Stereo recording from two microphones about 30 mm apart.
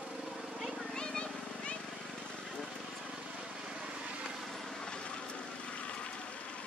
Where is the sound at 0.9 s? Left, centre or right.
Left.